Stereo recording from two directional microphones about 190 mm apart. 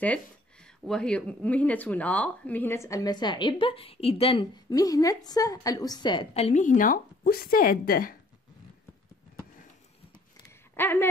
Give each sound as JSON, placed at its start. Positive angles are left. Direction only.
{"t": 0.8, "sound": "speech", "side_deg": 5}
{"t": 10.8, "sound": "speech", "side_deg": 10}